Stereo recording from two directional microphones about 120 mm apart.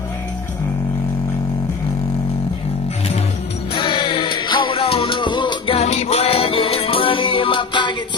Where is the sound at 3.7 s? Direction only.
45° left (ahead or behind).